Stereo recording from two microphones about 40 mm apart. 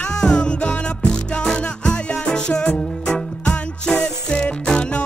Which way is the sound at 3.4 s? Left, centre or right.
Left.